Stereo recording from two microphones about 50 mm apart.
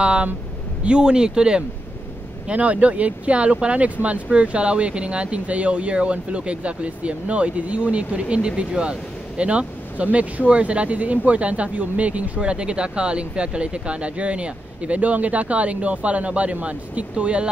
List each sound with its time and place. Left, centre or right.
0.0 s speech: right
2.4 s speech: right